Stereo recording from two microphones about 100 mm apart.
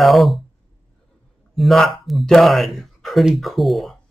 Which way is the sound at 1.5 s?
Centre (ahead or behind).